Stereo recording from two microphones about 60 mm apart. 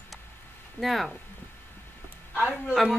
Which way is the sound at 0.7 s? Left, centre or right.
Centre.